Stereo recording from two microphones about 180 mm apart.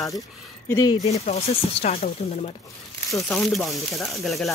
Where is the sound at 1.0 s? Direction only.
35° left (ahead or behind).